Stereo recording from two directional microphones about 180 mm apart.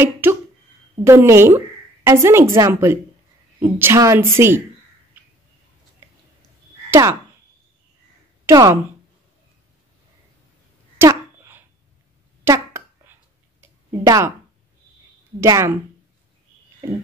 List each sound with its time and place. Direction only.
0.0 s a sound: 10° right (ahead or behind)
1.0 s a woman's voice: 15° right (ahead or behind)
5.2 s bird: 10° right (ahead or behind)
6.9 s speech: 15° right (ahead or behind)
8.5 s speech: 20° right (ahead or behind)
11.0 s a sound: 15° right (ahead or behind)
13.6 s tick-tock: 15° right (ahead or behind)
15.4 s a woman's voice: 15° right (ahead or behind)